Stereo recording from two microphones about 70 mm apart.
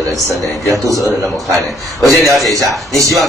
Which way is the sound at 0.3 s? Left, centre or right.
Right.